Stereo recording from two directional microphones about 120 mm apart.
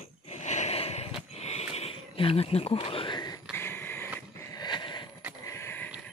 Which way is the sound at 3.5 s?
20° left (ahead or behind).